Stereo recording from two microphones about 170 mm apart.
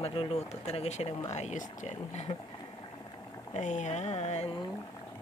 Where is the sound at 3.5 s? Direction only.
45° left (ahead or behind).